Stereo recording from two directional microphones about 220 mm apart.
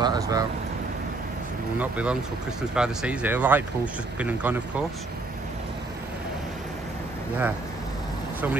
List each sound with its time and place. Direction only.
0.0 s speech: 15° right (ahead or behind)
1.8 s speech: 5° right (ahead or behind)